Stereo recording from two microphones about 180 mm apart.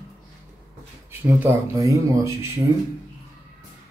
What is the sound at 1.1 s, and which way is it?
Speech, 15° right (ahead or behind).